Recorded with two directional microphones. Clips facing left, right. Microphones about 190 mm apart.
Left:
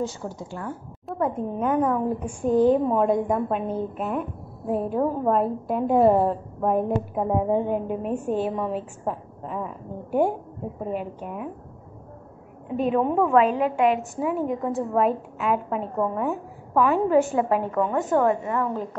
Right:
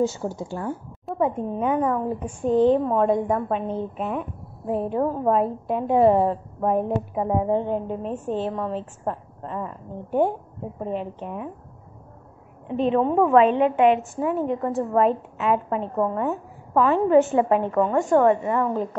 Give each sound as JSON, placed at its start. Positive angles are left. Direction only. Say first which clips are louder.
{"t": 0.1, "sound": "speech", "louder": "right 4 dB", "side_deg": -25}
{"t": 1.0, "sound": "a woman's voice", "louder": "right 2 dB", "side_deg": 0}
{"t": 12.7, "sound": "a woman's voice", "louder": "right 2 dB", "side_deg": 10}